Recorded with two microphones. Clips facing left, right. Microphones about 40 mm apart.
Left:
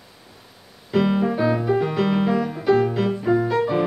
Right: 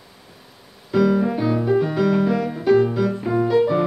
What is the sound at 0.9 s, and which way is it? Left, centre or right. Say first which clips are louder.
Music: right 2 dB; left.